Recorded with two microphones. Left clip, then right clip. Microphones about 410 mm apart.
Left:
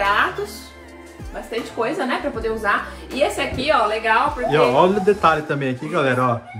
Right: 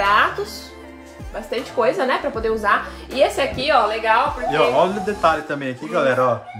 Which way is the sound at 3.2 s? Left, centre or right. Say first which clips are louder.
Right 3 dB; centre.